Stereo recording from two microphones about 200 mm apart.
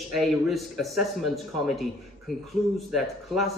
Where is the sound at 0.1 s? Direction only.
Centre (ahead or behind).